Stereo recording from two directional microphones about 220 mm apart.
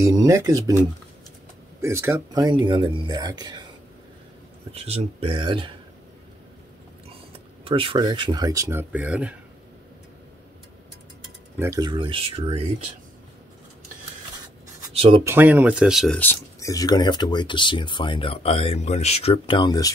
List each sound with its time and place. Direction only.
0.0 s speech: 15° right (ahead or behind)
4.7 s speech: 30° right (ahead or behind)
7.6 s speech: 25° right (ahead or behind); by 9.3 s 5° right (ahead or behind)
11.5 s speech: 15° right (ahead or behind)
15.0 s speech: 25° right (ahead or behind)
15.2 s speech: 10° right (ahead or behind); by 19.9 s 20° left (ahead or behind)